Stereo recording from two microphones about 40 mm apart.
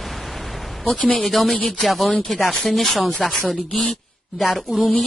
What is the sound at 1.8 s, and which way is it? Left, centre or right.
Speech, centre.